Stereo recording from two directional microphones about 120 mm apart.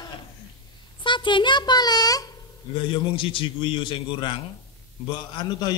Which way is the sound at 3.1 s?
45° left (ahead or behind).